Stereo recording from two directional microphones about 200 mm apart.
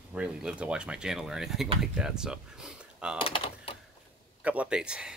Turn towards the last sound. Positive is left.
turn(degrees=-5)  # may be behind; listen again after turning